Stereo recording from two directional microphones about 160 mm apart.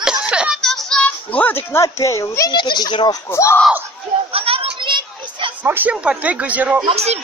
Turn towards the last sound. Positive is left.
turn(degrees=-40)  # may be behind; listen again after turning